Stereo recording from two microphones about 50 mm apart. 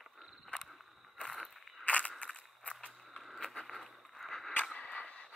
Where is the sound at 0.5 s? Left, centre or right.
Left.